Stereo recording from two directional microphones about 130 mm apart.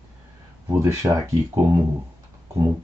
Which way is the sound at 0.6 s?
20° right (ahead or behind).